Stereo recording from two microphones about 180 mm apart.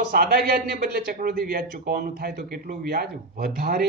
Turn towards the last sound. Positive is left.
turn(degrees=-55)  # may be behind; listen again after turning